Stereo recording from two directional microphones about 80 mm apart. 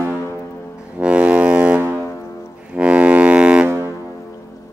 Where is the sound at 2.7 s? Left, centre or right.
Centre.